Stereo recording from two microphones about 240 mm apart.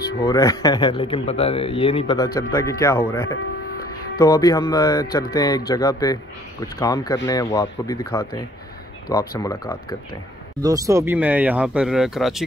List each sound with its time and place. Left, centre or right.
0.0 s speech: centre
10.6 s speech: centre